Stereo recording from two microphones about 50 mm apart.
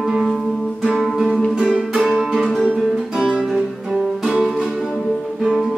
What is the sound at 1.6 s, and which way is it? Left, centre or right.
Music, centre.